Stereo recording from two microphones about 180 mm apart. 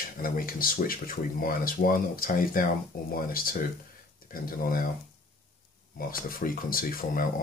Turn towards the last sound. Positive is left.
turn(degrees=50)  # may be behind; listen again after turning